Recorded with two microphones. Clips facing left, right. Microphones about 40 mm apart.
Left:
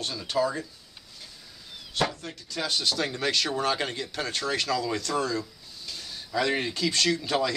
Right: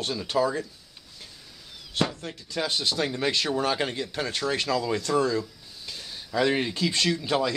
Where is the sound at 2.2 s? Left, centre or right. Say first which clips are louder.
Right 2 dB; centre.